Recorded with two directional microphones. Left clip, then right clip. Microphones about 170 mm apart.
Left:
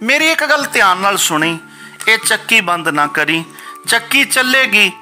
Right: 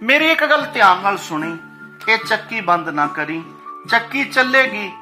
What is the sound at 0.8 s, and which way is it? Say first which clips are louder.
Speech: left 1 dB; 50° left (ahead or behind).